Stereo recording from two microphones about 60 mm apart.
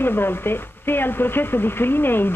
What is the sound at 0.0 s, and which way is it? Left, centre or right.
Speech, left.